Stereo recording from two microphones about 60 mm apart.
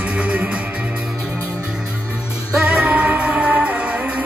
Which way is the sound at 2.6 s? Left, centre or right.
Right.